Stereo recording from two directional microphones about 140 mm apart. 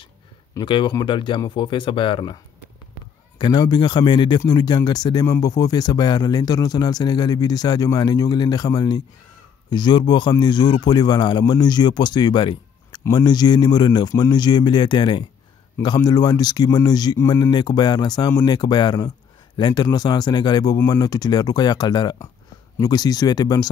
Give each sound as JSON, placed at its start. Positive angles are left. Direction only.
{"t": 0.6, "sound": "a man's voice", "side_deg": 35}